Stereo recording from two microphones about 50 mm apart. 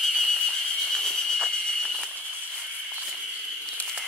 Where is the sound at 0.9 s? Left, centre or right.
Centre.